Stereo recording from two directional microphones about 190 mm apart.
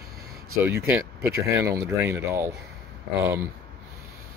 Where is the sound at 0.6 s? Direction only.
10° right (ahead or behind).